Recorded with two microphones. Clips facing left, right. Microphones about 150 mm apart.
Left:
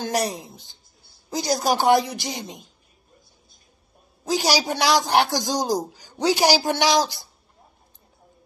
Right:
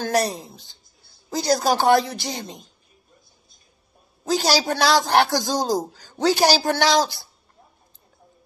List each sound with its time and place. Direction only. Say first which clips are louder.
0.0 s a woman's voice: right 3 dB; 15° left (ahead or behind)
4.3 s a man's voice: right 1 dB; 15° left (ahead or behind)